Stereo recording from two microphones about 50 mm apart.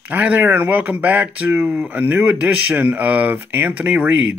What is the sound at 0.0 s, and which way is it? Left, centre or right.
Speech, right.